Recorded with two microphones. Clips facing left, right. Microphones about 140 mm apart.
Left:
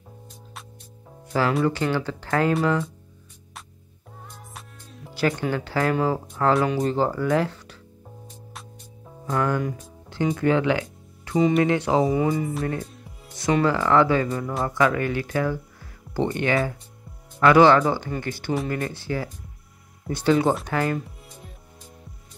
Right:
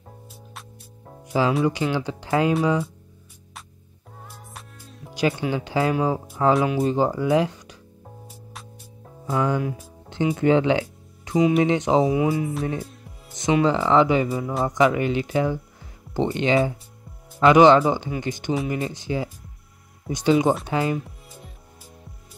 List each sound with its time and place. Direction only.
1.2 s music: 15° right (ahead or behind)
1.7 s speech: 15° right (ahead or behind)
4.3 s music: centre (ahead or behind)
5.1 s speech: 10° right (ahead or behind)
9.2 s speech: 10° right (ahead or behind)
10.3 s speech: 20° right (ahead or behind)
11.3 s speech: 5° right (ahead or behind)
11.6 s speech: 20° right (ahead or behind)
12.0 s speech: 5° right (ahead or behind)
13.7 s speech: 20° right (ahead or behind)
14.4 s speech: centre (ahead or behind)
14.7 s speech: 20° right (ahead or behind)